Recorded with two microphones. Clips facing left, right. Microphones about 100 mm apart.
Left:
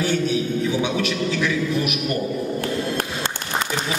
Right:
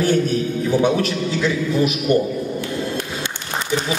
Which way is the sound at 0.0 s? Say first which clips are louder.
Right 4 dB; 45° right (ahead or behind).